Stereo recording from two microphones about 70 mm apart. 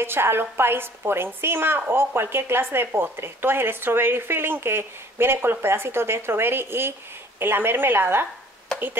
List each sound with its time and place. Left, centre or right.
0.0 s a woman's voice: right